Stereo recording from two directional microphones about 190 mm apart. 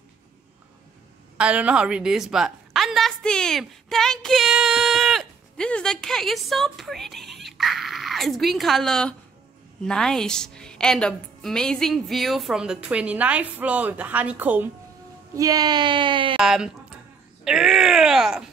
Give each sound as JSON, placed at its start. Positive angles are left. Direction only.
{"t": 1.4, "sound": "a woman's voice", "side_deg": -5}
{"t": 16.3, "sound": "a woman's voice", "side_deg": -5}